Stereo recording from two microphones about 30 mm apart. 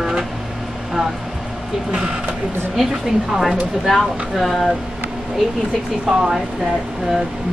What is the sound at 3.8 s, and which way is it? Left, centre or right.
Speech, centre.